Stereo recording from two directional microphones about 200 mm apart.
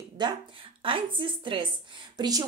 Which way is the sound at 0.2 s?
20° right (ahead or behind).